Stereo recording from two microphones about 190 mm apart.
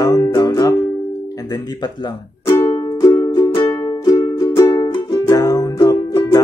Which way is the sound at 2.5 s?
15° left (ahead or behind).